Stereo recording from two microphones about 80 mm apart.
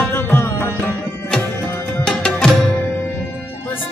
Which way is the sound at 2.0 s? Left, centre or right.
Centre.